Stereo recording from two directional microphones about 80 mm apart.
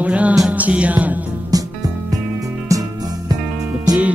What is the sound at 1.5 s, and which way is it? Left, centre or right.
Music, right.